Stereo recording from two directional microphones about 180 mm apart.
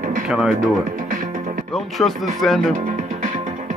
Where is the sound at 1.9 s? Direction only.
Centre (ahead or behind).